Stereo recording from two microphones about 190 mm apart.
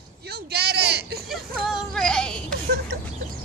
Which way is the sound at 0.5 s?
55° right (ahead or behind).